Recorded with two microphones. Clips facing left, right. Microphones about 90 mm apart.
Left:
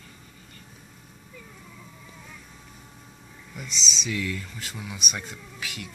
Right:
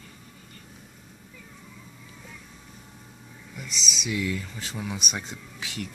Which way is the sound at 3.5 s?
10° right (ahead or behind).